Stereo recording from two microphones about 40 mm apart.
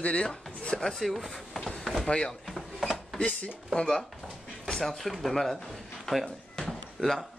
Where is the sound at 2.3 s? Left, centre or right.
Centre.